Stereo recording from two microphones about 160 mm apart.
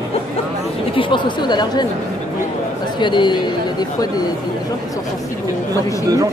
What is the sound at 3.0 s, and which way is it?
Speech, 30° left (ahead or behind).